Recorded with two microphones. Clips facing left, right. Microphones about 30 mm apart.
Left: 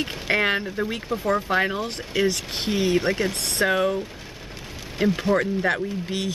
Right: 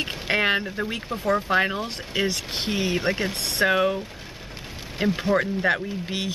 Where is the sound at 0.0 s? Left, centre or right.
Centre.